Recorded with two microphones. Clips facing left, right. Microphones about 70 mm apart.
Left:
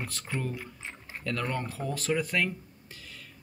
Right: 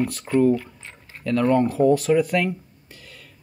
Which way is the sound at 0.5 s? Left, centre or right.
Centre.